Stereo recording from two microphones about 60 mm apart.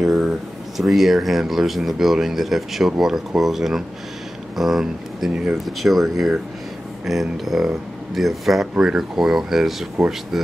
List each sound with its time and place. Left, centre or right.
0.0 s speech: centre